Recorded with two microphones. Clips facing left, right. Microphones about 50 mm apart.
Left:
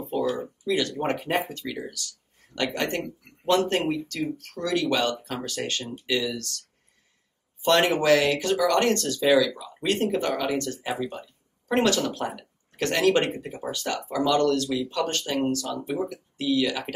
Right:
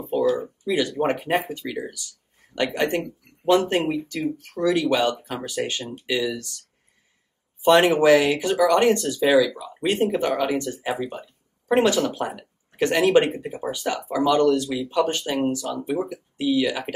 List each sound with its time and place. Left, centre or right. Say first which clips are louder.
0.0 s a sound: right 4 dB; centre
0.4 s speech: right 2 dB; centre
7.6 s speech: right 5 dB; centre